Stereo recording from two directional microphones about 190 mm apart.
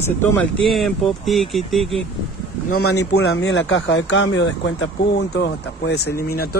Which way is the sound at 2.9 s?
80° left.